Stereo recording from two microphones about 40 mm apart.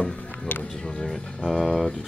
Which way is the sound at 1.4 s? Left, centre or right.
Centre.